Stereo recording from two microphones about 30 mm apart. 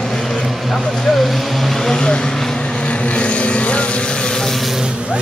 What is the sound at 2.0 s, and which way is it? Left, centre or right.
Speech, left.